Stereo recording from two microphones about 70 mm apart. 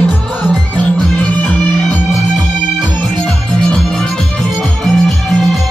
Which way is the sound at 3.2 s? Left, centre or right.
Centre.